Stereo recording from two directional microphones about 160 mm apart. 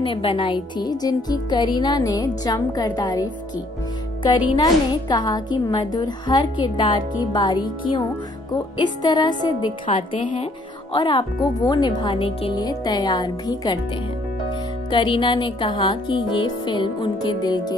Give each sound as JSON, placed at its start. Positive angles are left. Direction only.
{"t": 0.0, "sound": "speech", "side_deg": 35}
{"t": 4.6, "sound": "speech", "side_deg": 25}
{"t": 14.9, "sound": "speech", "side_deg": 30}